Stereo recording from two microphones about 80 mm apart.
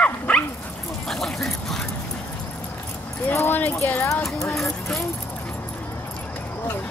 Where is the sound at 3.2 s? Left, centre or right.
Left.